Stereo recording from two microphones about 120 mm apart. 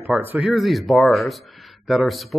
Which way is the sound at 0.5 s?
Centre (ahead or behind).